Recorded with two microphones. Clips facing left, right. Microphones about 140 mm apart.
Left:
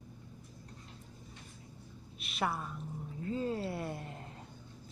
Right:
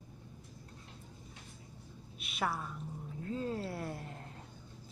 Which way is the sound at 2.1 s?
Centre (ahead or behind).